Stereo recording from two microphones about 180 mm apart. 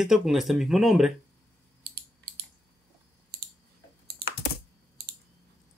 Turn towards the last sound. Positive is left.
turn(degrees=-60)  # may be behind; listen again after turning